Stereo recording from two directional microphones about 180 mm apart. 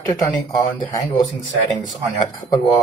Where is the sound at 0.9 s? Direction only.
20° left (ahead or behind).